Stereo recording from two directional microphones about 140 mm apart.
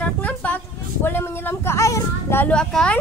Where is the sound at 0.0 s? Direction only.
10° left (ahead or behind).